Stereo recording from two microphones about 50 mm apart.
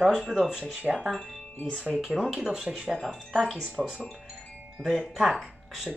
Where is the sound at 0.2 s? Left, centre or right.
Centre.